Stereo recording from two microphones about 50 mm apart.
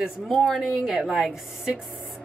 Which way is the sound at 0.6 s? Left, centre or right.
Centre.